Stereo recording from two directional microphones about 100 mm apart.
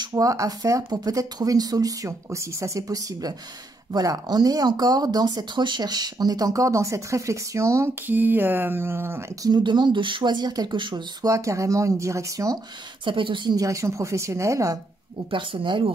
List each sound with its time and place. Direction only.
0.1 s speech: 30° right (ahead or behind)
8.1 s speech: 20° right (ahead or behind)
9.4 s speech: 45° right (ahead or behind)
11.2 s speech: 30° right (ahead or behind)
13.0 s speech: 55° right (ahead or behind)
13.6 s speech: 30° right (ahead or behind)
15.3 s speech: 55° right (ahead or behind)